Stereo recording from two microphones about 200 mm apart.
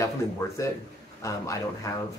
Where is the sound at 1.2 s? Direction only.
15° left (ahead or behind).